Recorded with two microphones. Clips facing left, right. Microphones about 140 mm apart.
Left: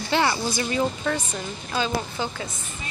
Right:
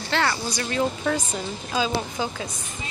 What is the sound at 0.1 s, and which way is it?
Speech, 15° left (ahead or behind).